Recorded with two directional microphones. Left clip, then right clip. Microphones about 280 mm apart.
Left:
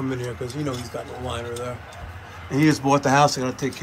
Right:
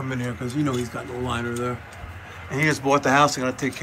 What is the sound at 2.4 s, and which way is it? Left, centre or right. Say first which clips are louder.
Speech: left 2 dB; centre.